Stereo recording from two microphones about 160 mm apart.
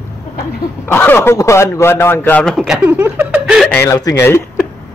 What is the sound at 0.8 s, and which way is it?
Speech, 10° left (ahead or behind).